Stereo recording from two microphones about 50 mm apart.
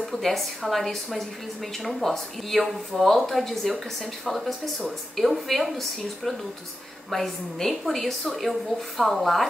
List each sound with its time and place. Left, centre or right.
0.0 s a woman's voice: centre